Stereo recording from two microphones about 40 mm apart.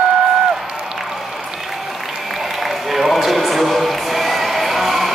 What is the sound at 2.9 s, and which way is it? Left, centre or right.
Music, centre.